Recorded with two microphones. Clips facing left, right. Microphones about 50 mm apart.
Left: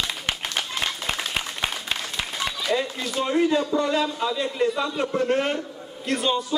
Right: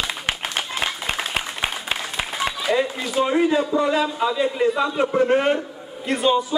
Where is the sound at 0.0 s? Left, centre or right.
Centre.